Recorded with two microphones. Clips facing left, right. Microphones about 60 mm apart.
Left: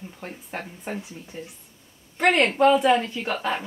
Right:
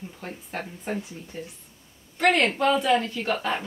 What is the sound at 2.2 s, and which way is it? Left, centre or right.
Speech, centre.